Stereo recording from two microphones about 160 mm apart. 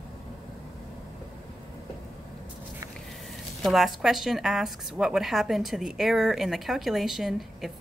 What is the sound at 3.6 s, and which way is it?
Speech, centre (ahead or behind).